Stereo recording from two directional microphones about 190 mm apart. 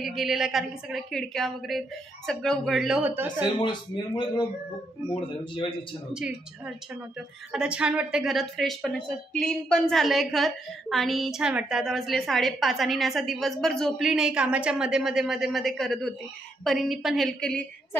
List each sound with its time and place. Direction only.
0.0 s a woman's voice: centre (ahead or behind)
3.6 s speech: 25° left (ahead or behind)
6.1 s a woman's voice: 5° right (ahead or behind)